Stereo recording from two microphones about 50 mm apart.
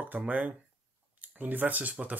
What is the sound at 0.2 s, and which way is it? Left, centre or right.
Speech, right.